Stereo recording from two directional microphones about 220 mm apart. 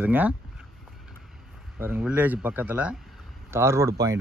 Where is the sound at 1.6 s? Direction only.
10° right (ahead or behind).